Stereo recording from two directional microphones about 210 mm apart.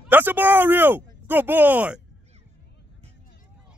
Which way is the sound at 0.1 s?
10° right (ahead or behind).